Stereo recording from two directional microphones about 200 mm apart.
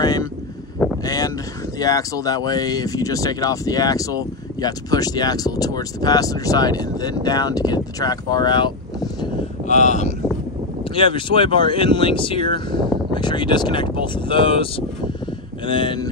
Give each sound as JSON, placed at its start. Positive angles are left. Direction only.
{"t": 0.0, "sound": "speech", "side_deg": 20}
{"t": 9.7, "sound": "speech", "side_deg": 35}